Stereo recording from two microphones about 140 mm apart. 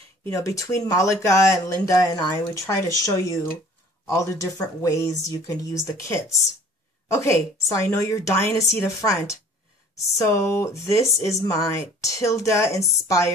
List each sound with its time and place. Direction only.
0.2 s speech: 25° left (ahead or behind)